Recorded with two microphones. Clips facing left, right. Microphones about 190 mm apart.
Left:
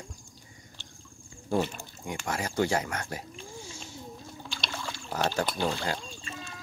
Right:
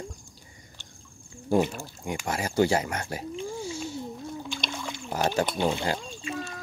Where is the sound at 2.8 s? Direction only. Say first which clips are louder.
Right 3 dB; 25° right (ahead or behind).